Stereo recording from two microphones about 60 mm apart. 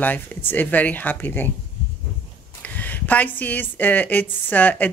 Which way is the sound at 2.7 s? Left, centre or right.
Left.